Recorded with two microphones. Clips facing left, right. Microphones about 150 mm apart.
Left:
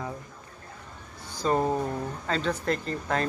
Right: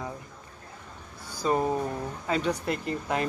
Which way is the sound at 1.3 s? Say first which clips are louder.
Left 1 dB; 10° right (ahead or behind).